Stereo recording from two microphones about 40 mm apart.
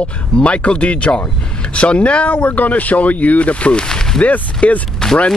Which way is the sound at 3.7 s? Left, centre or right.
Centre.